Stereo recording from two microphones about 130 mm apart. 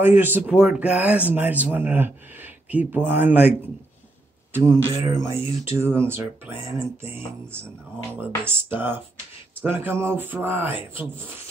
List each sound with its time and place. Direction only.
0.0 s speech: 15° right (ahead or behind)
5.0 s speech: 20° right (ahead or behind)